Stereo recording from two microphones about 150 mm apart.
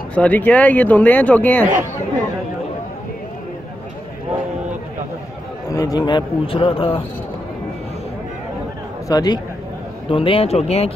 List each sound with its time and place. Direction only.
0.1 s speech: 10° left (ahead or behind)
5.7 s a man's voice: 20° left (ahead or behind)
9.1 s a man's voice: 25° left (ahead or behind); by 10.9 s 45° left (ahead or behind)